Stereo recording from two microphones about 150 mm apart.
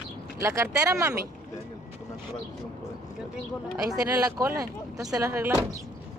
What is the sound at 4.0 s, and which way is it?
Speech, 25° right (ahead or behind).